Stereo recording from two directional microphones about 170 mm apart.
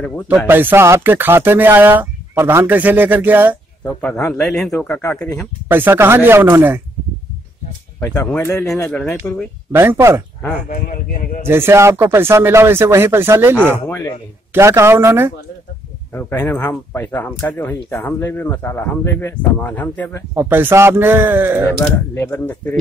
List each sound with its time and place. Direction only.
0.5 s speech: 10° right (ahead or behind)
3.8 s speech: 5° left (ahead or behind)
5.7 s speech: 10° right (ahead or behind)
8.0 s speech: 10° left (ahead or behind)
8.8 s speech: 5° left (ahead or behind)
9.7 s speech: 15° right (ahead or behind)
10.7 s speech: 55° left (ahead or behind)
11.4 s speech: 15° right (ahead or behind)
16.1 s speech: 10° left (ahead or behind)
20.3 s speech: 10° right (ahead or behind)
21.7 s speech: 15° left (ahead or behind)